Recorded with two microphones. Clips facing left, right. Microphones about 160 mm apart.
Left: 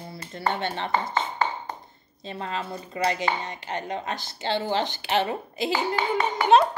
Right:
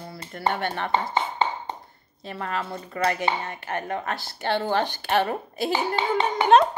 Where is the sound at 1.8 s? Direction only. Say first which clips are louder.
Even; 20° left (ahead or behind).